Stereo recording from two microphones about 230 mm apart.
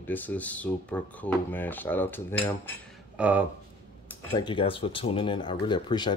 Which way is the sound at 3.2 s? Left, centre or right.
Centre.